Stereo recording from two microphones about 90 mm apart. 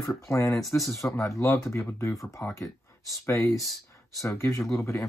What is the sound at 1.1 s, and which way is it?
Speech, 35° left (ahead or behind).